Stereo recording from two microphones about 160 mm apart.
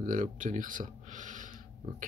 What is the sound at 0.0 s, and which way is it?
Speech, 55° right (ahead or behind).